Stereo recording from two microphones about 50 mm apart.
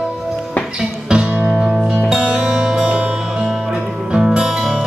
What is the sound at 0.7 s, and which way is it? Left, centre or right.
Music, centre.